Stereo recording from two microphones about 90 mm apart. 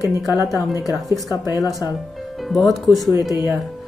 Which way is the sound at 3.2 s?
55° left (ahead or behind).